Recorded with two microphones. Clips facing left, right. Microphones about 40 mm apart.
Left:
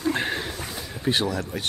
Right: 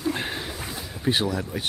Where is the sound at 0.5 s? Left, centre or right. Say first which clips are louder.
Even; centre.